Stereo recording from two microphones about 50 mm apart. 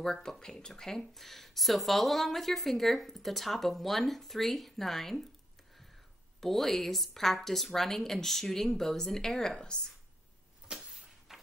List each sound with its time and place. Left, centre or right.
0.0 s speech: centre
6.4 s a woman's voice: centre
10.7 s a sound: centre